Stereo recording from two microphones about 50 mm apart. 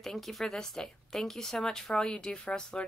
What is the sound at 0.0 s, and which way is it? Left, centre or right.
A woman's voice, centre.